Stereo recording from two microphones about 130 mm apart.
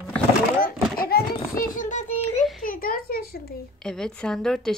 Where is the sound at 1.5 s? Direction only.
90° left.